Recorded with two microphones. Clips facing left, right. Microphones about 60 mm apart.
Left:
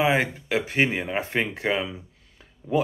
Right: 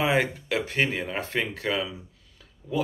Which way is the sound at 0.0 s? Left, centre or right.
Centre.